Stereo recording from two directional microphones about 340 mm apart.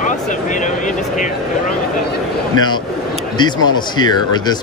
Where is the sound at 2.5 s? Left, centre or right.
Centre.